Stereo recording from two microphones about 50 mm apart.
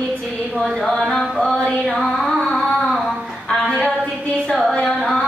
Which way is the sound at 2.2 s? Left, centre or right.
Centre.